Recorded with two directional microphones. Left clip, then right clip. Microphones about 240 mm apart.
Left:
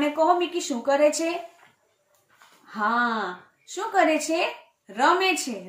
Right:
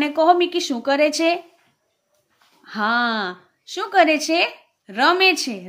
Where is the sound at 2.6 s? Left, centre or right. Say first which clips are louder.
Right 4 dB; right.